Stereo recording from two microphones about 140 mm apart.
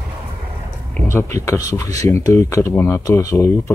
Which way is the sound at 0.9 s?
20° left (ahead or behind).